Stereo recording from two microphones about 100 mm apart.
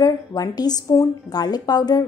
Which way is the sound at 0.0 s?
40° left (ahead or behind).